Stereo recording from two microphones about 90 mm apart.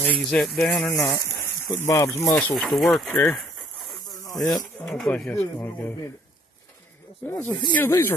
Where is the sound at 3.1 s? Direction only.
20° left (ahead or behind).